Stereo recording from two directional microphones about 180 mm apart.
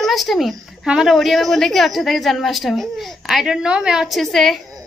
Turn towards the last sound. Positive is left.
turn(degrees=0)  # may be behind; listen again after turning